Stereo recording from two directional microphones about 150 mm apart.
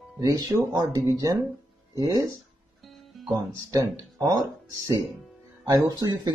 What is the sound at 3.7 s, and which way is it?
Speech, 25° right (ahead or behind).